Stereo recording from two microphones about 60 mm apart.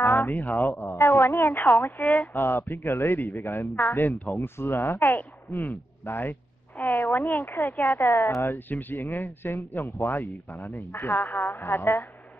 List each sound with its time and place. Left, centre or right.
0.0 s speech: left
2.3 s speech: left
4.4 s speech: left
8.1 s speech: left
8.5 s speech: left